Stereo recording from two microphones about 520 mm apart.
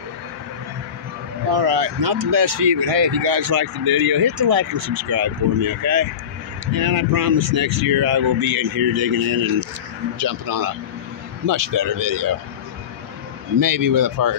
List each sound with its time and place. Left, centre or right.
1.5 s speech: right
7.3 s speech: right
7.9 s speech: right
13.6 s speech: right